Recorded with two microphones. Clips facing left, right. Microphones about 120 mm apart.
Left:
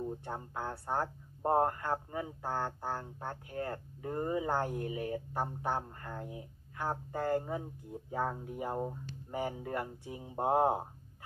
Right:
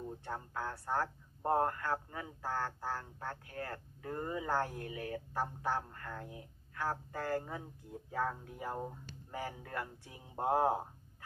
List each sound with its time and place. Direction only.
0.0 s speech: 20° left (ahead or behind)